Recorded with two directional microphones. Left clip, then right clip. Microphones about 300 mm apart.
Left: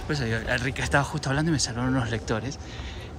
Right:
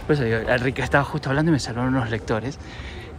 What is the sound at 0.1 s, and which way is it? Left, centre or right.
Speech, centre.